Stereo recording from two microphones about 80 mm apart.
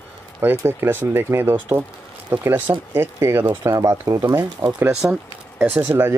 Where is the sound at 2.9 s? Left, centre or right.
Right.